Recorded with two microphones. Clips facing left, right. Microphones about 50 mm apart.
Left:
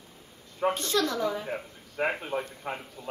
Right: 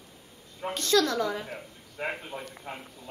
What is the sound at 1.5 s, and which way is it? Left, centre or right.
Speech, left.